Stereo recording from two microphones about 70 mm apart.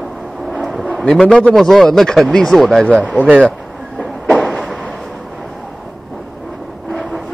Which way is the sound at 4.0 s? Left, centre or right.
Centre.